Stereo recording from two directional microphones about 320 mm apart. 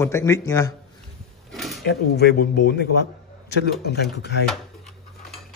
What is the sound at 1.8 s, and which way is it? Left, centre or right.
Speech, left.